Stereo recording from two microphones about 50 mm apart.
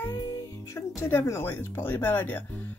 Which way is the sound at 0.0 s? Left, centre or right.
Left.